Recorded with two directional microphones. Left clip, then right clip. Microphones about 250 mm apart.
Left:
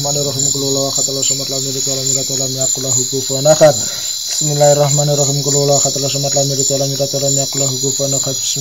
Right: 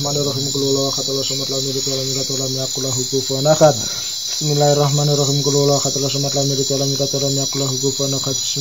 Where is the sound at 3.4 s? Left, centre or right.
Left.